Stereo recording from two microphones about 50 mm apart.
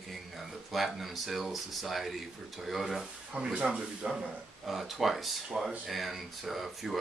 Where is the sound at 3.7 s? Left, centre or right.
Centre.